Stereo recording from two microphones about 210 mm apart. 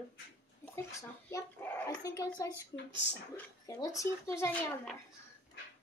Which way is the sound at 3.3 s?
15° left (ahead or behind).